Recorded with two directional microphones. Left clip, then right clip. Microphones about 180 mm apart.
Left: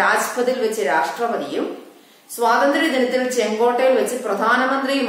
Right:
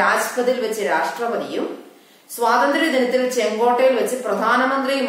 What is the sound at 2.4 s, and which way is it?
A woman's voice, 15° left (ahead or behind).